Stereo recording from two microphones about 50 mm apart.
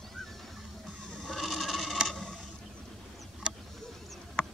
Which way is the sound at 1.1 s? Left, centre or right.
Centre.